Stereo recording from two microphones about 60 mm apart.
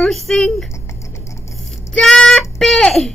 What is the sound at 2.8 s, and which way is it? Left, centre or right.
Speech, centre.